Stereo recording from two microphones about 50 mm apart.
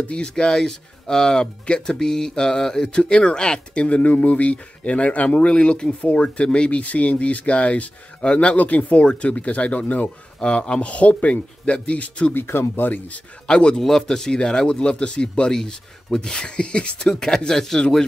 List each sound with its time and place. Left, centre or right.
0.1 s speech: centre; by 10.1 s left
10.4 s speech: centre
12.4 s speech: left
13.5 s a man's voice: centre